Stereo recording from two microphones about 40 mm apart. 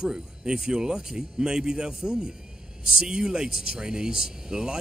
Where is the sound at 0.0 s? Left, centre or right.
Right.